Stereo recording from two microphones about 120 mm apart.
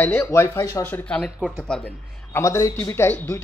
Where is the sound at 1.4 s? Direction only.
10° right (ahead or behind).